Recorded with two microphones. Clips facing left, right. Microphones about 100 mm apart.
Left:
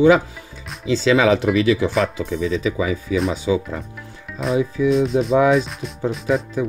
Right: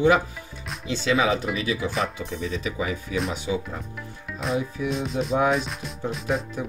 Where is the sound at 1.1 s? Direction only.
90° left.